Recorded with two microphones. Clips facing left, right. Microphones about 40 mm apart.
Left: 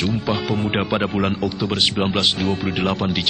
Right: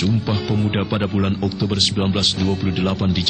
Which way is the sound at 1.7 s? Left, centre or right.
Centre.